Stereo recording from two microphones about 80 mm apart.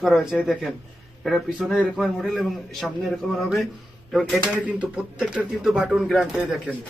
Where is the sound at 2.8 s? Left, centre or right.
Centre.